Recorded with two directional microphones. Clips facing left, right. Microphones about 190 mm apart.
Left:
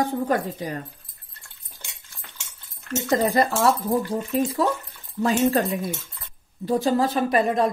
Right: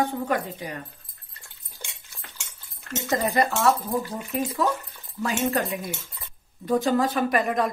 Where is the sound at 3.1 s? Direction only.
30° left (ahead or behind).